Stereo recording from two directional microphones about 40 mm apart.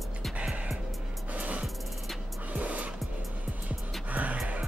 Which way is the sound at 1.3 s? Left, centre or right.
Right.